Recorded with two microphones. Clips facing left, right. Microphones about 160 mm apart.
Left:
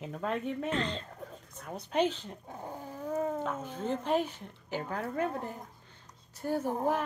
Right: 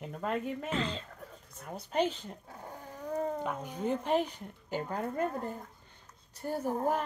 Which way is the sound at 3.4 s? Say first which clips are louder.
Even; 15° right (ahead or behind).